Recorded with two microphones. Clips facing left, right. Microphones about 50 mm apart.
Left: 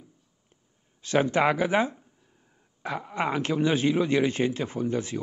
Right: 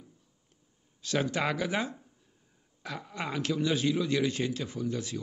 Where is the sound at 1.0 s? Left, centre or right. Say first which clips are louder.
Left 7 dB; left.